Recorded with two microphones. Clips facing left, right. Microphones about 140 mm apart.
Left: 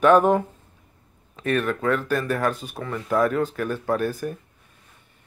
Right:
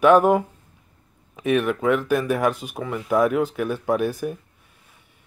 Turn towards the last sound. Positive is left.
turn(degrees=-10)  # may be behind; listen again after turning